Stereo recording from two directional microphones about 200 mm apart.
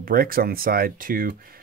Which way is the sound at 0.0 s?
45° right (ahead or behind).